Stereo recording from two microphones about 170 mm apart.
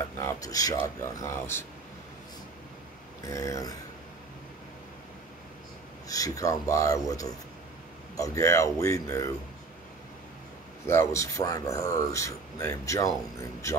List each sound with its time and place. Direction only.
0.0 s a sound: 15° left (ahead or behind)
1.1 s speech: 15° left (ahead or behind)
3.3 s a man's voice: 20° left (ahead or behind)
6.0 s a man's voice: 20° left (ahead or behind)
10.9 s speech: 15° left (ahead or behind)